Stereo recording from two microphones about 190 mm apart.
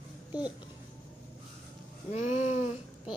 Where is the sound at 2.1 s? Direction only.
35° left (ahead or behind).